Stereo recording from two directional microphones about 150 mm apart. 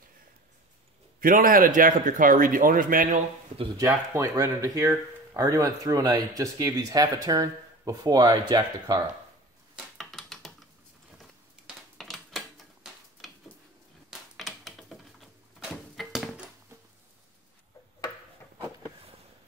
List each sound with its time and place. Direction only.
1.2 s a man's voice: 70° right (ahead or behind)
3.8 s speech: 20° right (ahead or behind)
9.8 s a sound: centre (ahead or behind)